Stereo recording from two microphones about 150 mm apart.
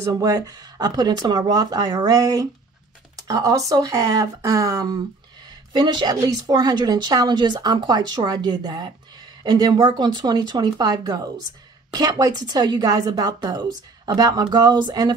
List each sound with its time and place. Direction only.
0.0 s speech: 25° right (ahead or behind)